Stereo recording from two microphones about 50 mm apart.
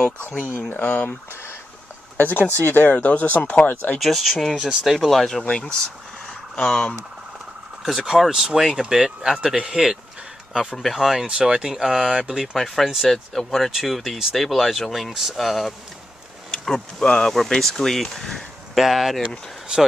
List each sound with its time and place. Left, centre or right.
0.0 s speech: left
1.3 s boiling: left
2.1 s speech: left
4.0 s speech: centre
5.4 s speech: left
7.8 s speech: centre
11.2 s speech: centre
12.5 s speech: centre
12.8 s speech: centre
13.1 s speech: centre